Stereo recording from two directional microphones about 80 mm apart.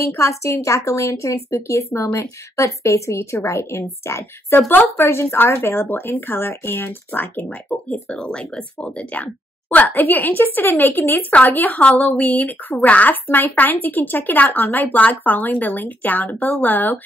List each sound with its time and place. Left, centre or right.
0.1 s a woman's voice: left